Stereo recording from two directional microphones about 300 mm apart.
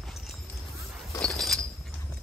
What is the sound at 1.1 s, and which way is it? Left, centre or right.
Chink, centre.